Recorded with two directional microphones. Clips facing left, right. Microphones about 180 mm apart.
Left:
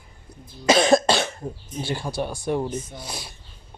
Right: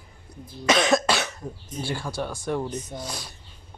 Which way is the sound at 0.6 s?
30° left (ahead or behind).